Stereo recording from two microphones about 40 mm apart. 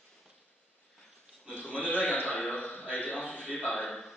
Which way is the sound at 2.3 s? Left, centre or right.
Left.